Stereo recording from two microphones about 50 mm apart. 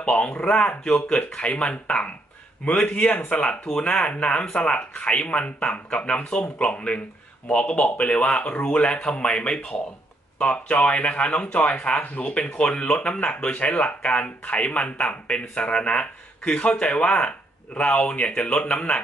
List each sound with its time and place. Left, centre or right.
0.0 s speech: left